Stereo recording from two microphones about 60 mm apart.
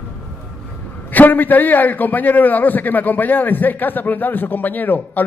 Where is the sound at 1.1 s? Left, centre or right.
Left.